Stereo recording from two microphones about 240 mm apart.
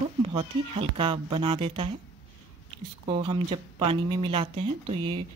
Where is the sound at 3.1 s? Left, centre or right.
Right.